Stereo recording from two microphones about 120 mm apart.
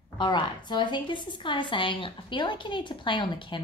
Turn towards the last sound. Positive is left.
turn(degrees=40)  # may be behind; listen again after turning